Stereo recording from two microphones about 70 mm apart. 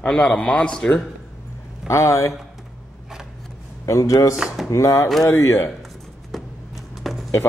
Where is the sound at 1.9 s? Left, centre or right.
Left.